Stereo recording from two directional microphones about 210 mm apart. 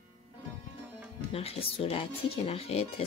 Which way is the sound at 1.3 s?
25° left (ahead or behind).